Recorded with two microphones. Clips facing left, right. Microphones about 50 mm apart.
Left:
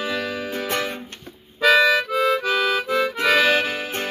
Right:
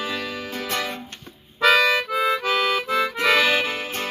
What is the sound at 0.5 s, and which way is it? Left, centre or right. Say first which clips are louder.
Music: left 1 dB; left.